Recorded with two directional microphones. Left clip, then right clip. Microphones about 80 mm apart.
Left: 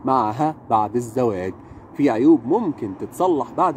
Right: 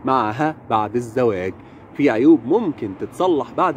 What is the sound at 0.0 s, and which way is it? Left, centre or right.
Speech, left.